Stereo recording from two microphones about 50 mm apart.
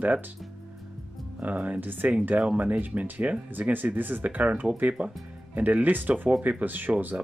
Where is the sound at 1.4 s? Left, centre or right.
Right.